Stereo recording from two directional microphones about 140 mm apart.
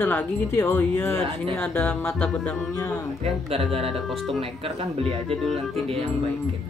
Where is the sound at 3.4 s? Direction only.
45° right (ahead or behind).